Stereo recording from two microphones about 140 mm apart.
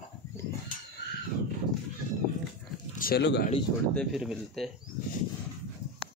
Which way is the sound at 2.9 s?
80° left.